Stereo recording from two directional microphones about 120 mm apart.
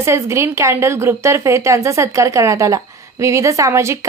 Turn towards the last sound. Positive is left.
turn(degrees=-25)  # may be behind; listen again after turning